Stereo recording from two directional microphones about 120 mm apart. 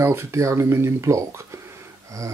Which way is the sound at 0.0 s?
20° right (ahead or behind).